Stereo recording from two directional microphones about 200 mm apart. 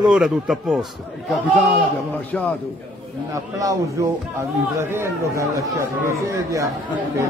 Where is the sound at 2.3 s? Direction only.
5° left (ahead or behind).